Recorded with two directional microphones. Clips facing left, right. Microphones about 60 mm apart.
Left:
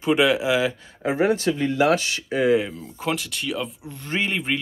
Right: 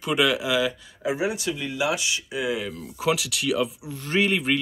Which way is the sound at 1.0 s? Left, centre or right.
Left.